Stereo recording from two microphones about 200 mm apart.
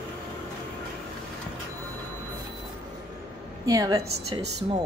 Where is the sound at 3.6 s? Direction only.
20° right (ahead or behind).